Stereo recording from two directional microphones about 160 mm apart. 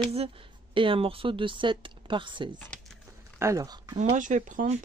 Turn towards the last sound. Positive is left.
turn(degrees=-55)  # may be behind; listen again after turning